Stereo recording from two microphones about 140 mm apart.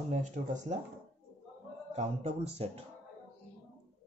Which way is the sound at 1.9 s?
50° right (ahead or behind).